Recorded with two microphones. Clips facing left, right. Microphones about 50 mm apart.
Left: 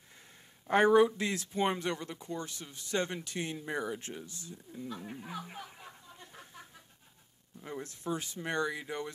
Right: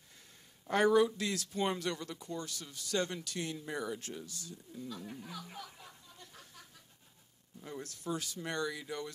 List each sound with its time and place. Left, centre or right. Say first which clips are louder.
0.7 s speech: left 3 dB; left